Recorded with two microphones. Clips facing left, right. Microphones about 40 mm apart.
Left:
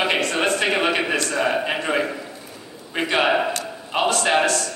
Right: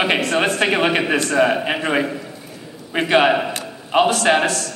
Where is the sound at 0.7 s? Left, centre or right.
Centre.